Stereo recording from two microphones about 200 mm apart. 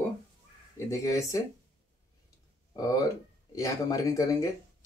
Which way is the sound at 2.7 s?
20° left (ahead or behind).